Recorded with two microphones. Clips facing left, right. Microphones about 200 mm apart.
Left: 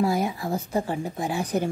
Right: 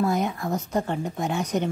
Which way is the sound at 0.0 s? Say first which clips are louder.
Even; 5° left (ahead or behind).